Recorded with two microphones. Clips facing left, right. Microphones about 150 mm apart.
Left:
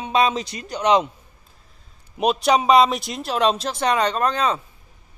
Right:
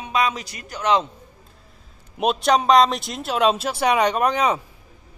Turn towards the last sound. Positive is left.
turn(degrees=-15)  # may be behind; listen again after turning